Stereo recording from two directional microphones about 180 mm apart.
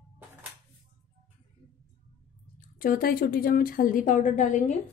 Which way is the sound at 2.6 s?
50° left (ahead or behind).